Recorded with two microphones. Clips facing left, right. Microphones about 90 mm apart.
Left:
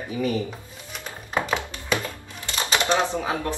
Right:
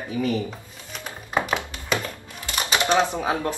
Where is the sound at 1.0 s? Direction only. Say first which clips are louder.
Right 1 dB; 15° right (ahead or behind).